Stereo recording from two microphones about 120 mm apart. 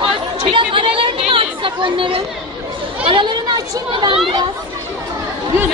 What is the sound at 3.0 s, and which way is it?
Speech, 45° right (ahead or behind).